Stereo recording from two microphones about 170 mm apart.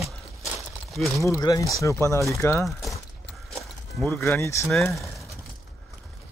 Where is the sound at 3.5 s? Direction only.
Centre (ahead or behind).